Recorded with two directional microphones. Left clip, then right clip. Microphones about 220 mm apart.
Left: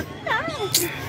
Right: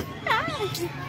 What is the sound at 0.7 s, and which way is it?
Music, 50° left (ahead or behind).